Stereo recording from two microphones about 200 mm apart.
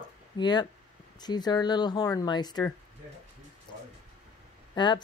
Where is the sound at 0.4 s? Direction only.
20° left (ahead or behind).